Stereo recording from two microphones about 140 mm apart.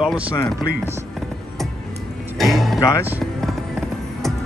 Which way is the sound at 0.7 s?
90° right.